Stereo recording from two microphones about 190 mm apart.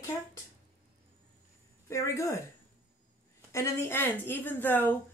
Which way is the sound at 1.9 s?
15° left (ahead or behind).